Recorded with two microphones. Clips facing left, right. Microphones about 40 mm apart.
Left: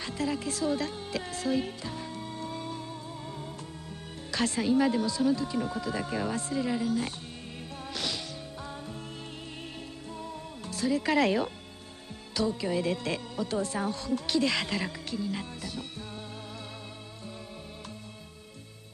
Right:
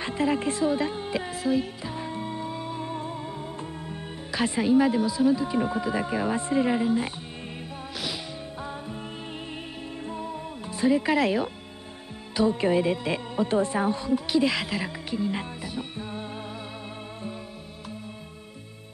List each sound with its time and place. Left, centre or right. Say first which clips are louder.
0.0 s music: right 6 dB; right
2.8 s music: right 8 dB; right
4.3 s speech: right 4 dB; centre
10.0 s music: right 7 dB; right
11.1 s speech: right 2 dB; centre
12.5 s speech: right 7 dB; right
12.8 s speech: right 4 dB; centre
13.4 s speech: right 8 dB; right